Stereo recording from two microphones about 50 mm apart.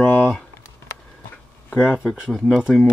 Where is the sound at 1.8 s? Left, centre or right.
Centre.